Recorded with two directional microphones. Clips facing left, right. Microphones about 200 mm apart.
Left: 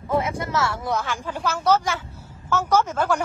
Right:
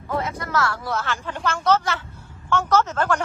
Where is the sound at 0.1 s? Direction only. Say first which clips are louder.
Left 2 dB; 25° left (ahead or behind).